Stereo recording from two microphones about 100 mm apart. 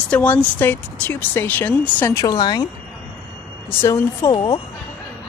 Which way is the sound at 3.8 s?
30° left (ahead or behind).